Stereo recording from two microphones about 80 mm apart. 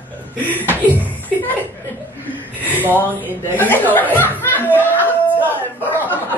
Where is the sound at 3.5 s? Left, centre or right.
Left.